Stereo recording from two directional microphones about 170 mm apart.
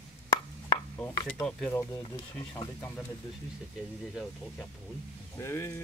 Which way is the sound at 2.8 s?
10° left (ahead or behind).